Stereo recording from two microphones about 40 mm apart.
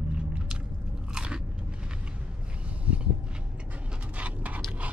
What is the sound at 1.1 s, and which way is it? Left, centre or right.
Biting, right.